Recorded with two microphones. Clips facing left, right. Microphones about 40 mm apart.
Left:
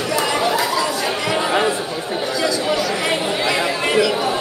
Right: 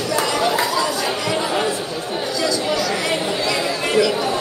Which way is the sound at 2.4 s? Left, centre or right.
Centre.